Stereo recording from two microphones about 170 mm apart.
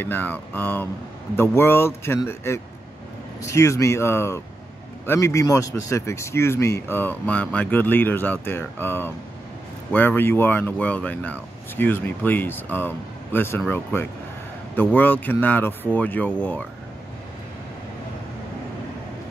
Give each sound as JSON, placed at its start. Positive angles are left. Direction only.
{"t": 0.0, "sound": "speech", "side_deg": 10}